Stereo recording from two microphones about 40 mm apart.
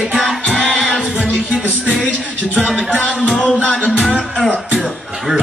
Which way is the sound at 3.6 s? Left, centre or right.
Left.